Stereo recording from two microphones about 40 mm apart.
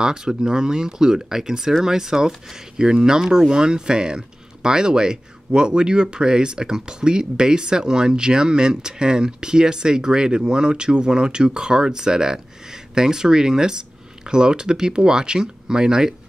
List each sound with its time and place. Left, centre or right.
0.0 s speech: centre